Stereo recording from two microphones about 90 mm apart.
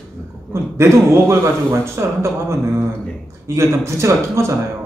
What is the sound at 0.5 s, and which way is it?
A man's voice, 30° right (ahead or behind).